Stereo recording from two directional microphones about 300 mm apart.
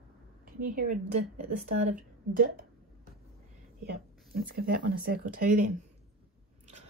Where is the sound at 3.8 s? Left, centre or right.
Right.